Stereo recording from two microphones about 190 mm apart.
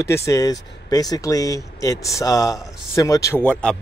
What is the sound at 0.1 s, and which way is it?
A man's voice, 15° left (ahead or behind).